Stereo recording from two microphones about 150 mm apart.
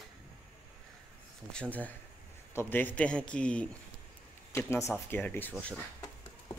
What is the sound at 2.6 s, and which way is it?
A man's voice, 15° left (ahead or behind).